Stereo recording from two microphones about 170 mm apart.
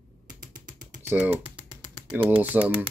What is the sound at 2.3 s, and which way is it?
Speech, 10° right (ahead or behind).